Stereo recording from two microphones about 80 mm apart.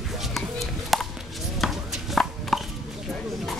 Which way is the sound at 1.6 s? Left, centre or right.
Centre.